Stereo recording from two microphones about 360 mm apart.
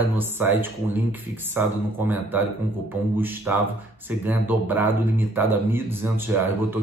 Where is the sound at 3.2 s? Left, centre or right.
Centre.